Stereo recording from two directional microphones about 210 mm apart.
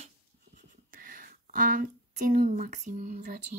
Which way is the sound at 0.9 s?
40° right (ahead or behind).